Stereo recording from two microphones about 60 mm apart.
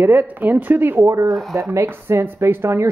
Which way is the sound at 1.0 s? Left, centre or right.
Right.